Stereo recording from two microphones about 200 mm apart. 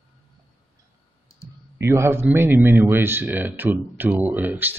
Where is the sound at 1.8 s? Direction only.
15° right (ahead or behind).